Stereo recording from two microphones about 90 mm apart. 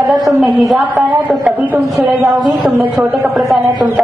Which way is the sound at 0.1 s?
Centre (ahead or behind).